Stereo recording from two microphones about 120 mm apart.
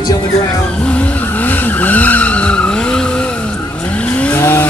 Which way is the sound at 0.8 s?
10° left (ahead or behind).